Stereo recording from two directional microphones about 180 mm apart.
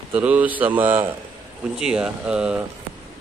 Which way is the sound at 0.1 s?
10° right (ahead or behind).